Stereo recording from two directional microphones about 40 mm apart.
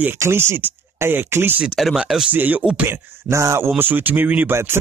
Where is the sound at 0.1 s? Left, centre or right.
Right.